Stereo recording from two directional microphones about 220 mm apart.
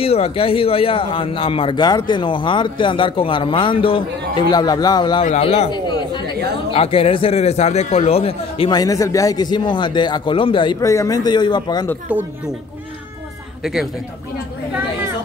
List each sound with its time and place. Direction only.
0.0 s a man's voice: 25° left (ahead or behind)
5.2 s a man's voice: 30° left (ahead or behind)
13.6 s speech: centre (ahead or behind)